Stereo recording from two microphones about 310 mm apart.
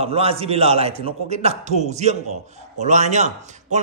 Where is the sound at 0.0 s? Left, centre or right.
Centre.